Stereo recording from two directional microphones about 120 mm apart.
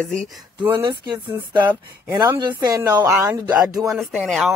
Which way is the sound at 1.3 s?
15° right (ahead or behind).